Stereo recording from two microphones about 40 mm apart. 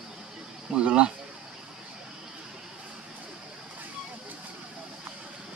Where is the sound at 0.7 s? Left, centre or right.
Right.